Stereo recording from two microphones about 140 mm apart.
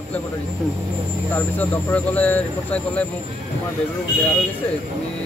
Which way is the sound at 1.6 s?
10° left (ahead or behind).